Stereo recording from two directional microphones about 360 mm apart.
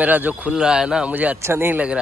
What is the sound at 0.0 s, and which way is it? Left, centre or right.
Speech, centre.